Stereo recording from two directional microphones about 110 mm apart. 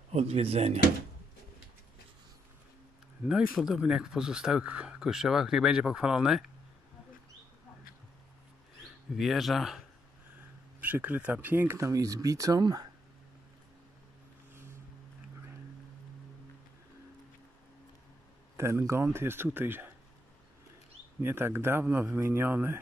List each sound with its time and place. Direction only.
0.1 s speech: 70° right (ahead or behind)
3.3 s speech: 5° right (ahead or behind)
9.1 s speech: centre (ahead or behind)
10.8 s speech: 15° right (ahead or behind); by 12.8 s 35° right (ahead or behind)
14.5 s vehicle: 20° right (ahead or behind)
18.6 s speech: 25° right (ahead or behind)
21.2 s speech: 20° right (ahead or behind)